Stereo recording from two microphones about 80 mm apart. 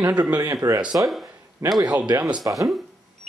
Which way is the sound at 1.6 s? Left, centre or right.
Right.